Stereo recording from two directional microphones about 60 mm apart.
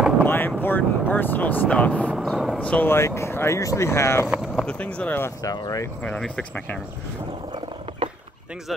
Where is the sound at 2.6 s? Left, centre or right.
Left.